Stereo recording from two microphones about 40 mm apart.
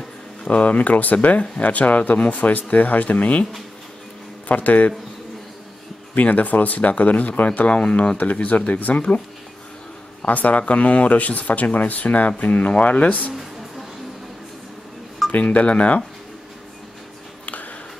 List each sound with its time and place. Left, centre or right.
0.5 s speech: left
4.5 s speech: left
6.1 s speech: left
8.2 s speech: left
10.2 s speech: left
13.3 s music: centre
15.3 s speech: left